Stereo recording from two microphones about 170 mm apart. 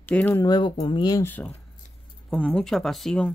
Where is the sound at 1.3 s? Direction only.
10° left (ahead or behind).